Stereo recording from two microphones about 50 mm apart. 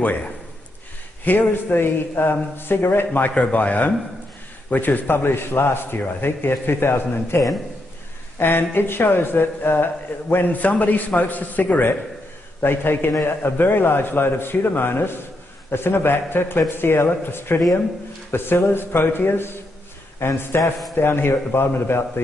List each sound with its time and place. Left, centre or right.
0.0 s a man's voice: left
3.1 s a man's voice: left
10.3 s a man's voice: left
12.6 s a man's voice: left